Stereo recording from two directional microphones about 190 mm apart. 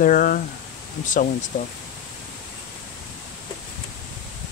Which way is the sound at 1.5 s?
45° left (ahead or behind).